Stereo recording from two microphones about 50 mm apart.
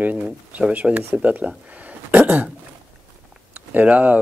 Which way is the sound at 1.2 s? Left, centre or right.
Right.